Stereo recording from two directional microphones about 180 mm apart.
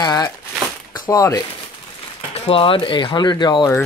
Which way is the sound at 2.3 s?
30° left (ahead or behind).